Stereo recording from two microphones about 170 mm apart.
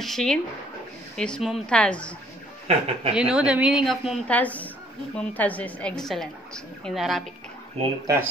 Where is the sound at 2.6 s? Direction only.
40° right (ahead or behind).